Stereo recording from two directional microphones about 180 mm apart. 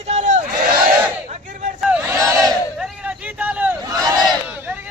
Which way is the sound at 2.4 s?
5° right (ahead or behind).